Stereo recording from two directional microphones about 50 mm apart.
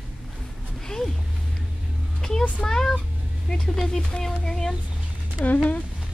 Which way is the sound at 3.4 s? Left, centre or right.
Centre.